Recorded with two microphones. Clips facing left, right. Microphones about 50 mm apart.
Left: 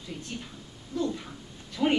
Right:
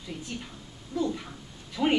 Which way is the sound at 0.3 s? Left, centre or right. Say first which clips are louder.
Even; centre.